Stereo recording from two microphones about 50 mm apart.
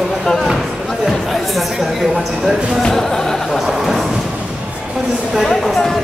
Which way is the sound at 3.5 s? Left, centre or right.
Centre.